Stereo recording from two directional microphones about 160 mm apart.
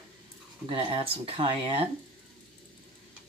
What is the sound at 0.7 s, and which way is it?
Speech, 35° right (ahead or behind).